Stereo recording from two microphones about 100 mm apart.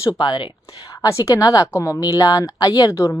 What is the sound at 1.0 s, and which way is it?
A woman's voice, 35° left (ahead or behind).